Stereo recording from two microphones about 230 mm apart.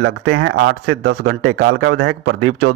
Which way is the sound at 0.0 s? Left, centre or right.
Right.